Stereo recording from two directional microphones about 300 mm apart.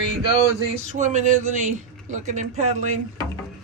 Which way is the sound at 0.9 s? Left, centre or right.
Right.